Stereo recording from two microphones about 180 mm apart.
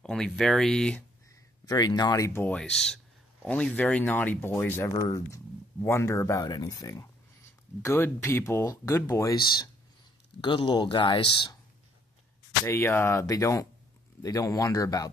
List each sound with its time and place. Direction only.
0.0 s speech: centre (ahead or behind)
1.7 s speech: 20° left (ahead or behind)
12.6 s speech: 15° left (ahead or behind)